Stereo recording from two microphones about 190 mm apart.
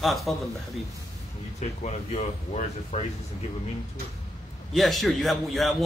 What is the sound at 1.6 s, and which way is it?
Speech, 35° left (ahead or behind).